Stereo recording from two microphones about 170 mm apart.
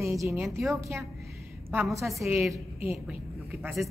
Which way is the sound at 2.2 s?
15° right (ahead or behind).